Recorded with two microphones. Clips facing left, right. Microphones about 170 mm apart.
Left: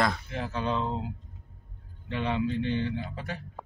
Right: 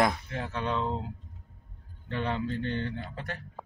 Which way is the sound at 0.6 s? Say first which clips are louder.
Left 1 dB; 5° left (ahead or behind).